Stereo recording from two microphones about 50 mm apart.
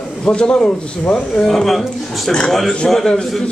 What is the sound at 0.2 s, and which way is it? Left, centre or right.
Speech, left.